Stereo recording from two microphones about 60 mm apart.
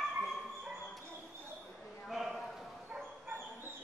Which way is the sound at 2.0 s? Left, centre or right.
Centre.